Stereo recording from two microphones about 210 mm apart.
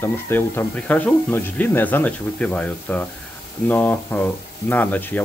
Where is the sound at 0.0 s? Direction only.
10° left (ahead or behind).